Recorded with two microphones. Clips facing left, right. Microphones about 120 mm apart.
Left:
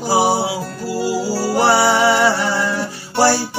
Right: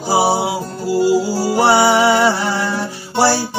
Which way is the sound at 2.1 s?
10° right (ahead or behind).